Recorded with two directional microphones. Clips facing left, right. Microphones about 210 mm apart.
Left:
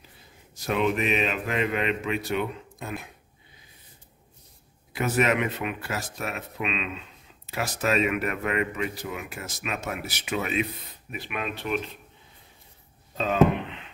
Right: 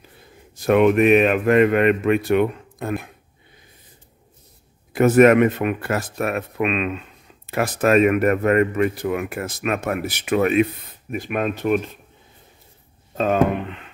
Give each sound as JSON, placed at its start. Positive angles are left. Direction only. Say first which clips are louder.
{"t": 0.6, "sound": "speech", "louder": "right 10 dB", "side_deg": -55}
{"t": 4.9, "sound": "a man's voice", "louder": "right 12 dB", "side_deg": -50}
{"t": 13.1, "sound": "speech", "louder": "right 3 dB", "side_deg": -50}